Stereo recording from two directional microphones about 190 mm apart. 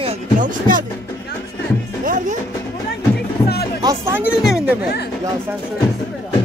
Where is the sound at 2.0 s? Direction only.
40° right (ahead or behind).